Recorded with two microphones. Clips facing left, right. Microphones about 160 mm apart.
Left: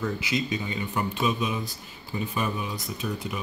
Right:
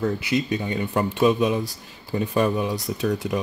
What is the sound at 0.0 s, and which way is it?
Speech, 60° right (ahead or behind).